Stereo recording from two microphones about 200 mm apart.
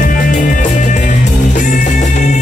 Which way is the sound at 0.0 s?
45° left (ahead or behind).